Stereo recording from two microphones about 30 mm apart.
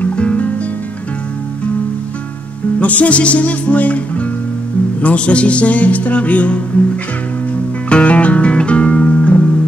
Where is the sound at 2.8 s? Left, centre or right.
Left.